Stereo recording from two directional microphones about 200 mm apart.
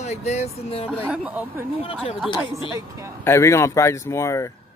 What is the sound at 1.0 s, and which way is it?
Speech, 5° right (ahead or behind).